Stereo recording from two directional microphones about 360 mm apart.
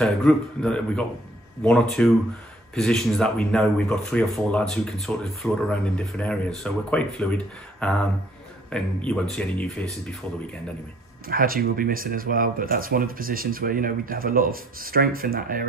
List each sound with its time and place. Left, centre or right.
0.0 s speech: centre
11.2 s speech: right